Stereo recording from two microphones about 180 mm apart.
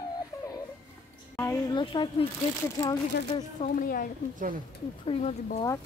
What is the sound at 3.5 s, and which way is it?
Speech, 45° left (ahead or behind).